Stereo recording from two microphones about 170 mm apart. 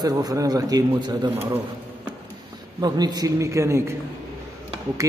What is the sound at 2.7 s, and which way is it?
Speech, 25° right (ahead or behind).